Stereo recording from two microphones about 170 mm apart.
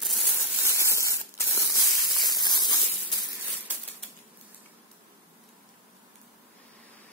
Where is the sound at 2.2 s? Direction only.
25° left (ahead or behind).